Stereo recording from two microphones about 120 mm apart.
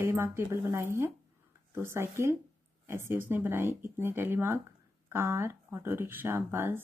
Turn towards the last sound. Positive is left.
turn(degrees=-20)  # may be behind; listen again after turning